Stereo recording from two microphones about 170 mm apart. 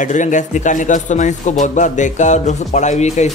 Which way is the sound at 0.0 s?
45° left (ahead or behind).